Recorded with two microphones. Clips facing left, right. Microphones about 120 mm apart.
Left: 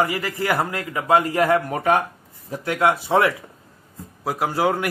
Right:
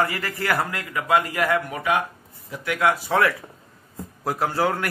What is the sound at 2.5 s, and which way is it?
Speech, 30° left (ahead or behind).